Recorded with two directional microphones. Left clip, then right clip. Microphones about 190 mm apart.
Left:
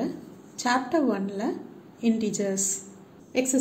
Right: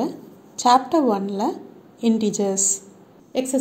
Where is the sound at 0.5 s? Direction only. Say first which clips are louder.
Right 8 dB; 30° right (ahead or behind).